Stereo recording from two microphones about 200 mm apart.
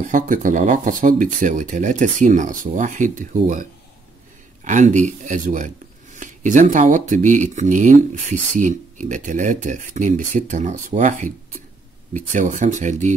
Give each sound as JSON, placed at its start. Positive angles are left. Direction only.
{"t": 0.0, "sound": "speech", "side_deg": -40}
{"t": 4.6, "sound": "speech", "side_deg": -40}